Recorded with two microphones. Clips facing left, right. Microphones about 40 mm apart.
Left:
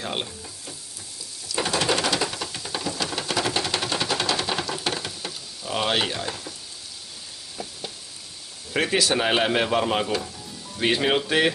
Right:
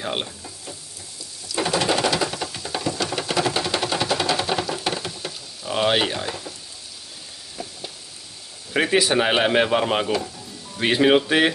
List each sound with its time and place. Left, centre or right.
0.0 s frying: centre
1.5 s a sound: centre
8.7 s speech: centre